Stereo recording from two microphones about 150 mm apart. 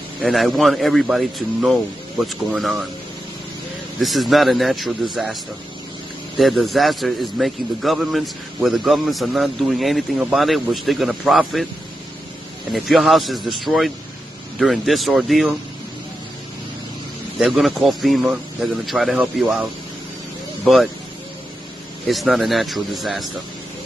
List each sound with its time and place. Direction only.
0.2 s speech: centre (ahead or behind)
4.0 s speech: centre (ahead or behind)
12.7 s speech: centre (ahead or behind)
17.4 s speech: centre (ahead or behind)
20.6 s speech: centre (ahead or behind)
22.0 s speech: centre (ahead or behind)